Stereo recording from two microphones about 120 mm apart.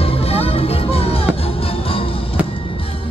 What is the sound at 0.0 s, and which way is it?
Music, 55° left (ahead or behind).